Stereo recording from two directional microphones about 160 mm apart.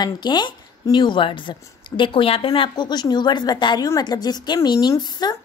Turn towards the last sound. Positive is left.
turn(degrees=25)  # may be behind; listen again after turning